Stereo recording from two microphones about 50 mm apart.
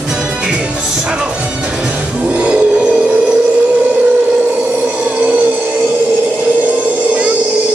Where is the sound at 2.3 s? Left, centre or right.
Right.